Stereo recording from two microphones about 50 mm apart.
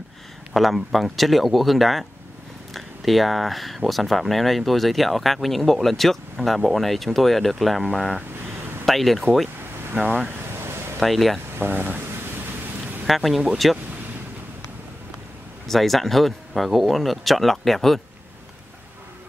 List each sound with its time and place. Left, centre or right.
0.5 s speech: centre
11.0 s speech: centre
11.5 s speech: right
13.0 s speech: centre
15.6 s speech: centre